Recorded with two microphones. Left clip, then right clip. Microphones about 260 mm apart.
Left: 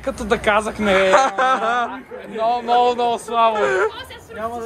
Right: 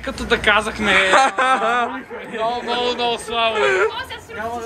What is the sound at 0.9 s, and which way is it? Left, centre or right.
Speech, centre.